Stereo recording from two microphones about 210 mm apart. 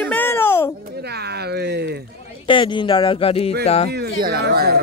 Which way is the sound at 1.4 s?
50° right (ahead or behind).